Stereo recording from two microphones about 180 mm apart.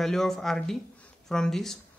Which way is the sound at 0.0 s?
Centre (ahead or behind).